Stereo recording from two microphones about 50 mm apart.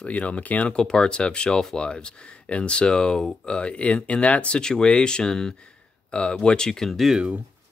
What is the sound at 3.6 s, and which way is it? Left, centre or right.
Speech, left.